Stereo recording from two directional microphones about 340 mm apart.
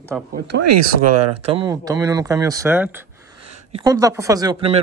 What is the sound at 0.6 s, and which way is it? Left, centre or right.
Speech, right.